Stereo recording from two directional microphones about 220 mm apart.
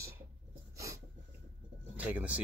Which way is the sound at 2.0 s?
5° right (ahead or behind).